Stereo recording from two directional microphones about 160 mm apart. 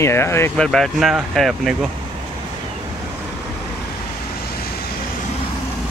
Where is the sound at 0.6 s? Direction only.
5° left (ahead or behind).